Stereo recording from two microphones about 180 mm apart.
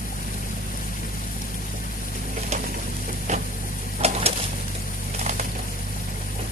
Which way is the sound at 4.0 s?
35° right (ahead or behind).